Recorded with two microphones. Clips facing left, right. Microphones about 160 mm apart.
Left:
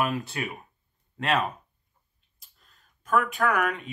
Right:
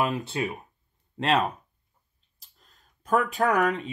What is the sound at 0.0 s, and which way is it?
Speech, 20° right (ahead or behind).